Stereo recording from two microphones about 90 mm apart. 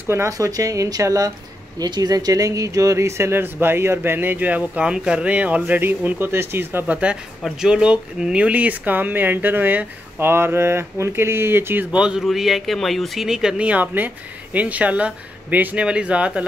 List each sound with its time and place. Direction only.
0.0 s speech: 30° right (ahead or behind)
0.3 s speech: 40° right (ahead or behind); by 7.0 s 25° right (ahead or behind)
7.4 s speech: 10° right (ahead or behind); by 11.8 s 25° right (ahead or behind)
11.9 s speech: 10° right (ahead or behind)